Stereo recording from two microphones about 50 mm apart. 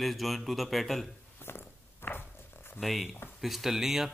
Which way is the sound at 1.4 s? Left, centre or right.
Left.